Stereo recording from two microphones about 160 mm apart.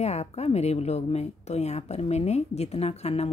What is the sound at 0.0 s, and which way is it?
Speech, 40° left (ahead or behind).